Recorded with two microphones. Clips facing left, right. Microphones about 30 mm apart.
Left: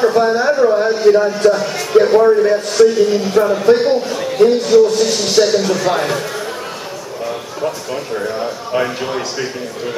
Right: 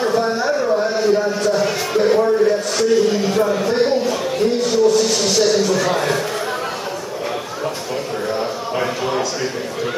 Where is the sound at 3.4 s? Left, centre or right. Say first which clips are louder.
Left 6 dB; centre.